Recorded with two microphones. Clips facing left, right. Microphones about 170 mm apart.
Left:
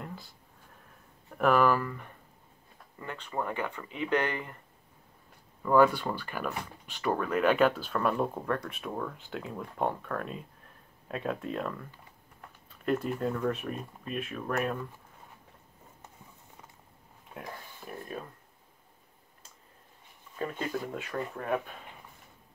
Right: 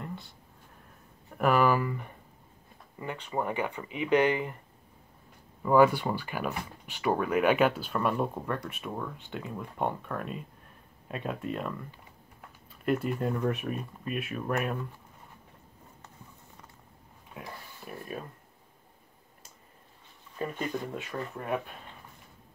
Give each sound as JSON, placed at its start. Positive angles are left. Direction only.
{"t": 0.0, "sound": "a sound", "side_deg": 0}
{"t": 1.4, "sound": "speech", "side_deg": -5}
{"t": 5.6, "sound": "speech", "side_deg": -10}
{"t": 12.8, "sound": "speech", "side_deg": -5}
{"t": 13.3, "sound": "speech", "side_deg": -15}
{"t": 20.3, "sound": "speech", "side_deg": -15}
{"t": 20.6, "sound": "speech", "side_deg": 5}